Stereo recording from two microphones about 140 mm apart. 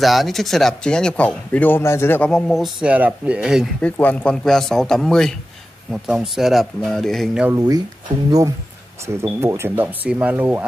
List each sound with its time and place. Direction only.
0.0 s speech: centre (ahead or behind)
2.3 s a man's voice: centre (ahead or behind)
3.8 s a man's voice: 10° left (ahead or behind)
7.5 s a man's voice: 30° right (ahead or behind); by 10.6 s 10° right (ahead or behind)